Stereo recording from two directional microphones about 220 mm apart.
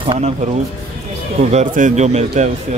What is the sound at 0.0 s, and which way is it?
Speech, 25° right (ahead or behind).